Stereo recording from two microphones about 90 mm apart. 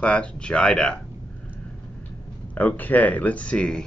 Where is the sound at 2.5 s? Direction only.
20° left (ahead or behind).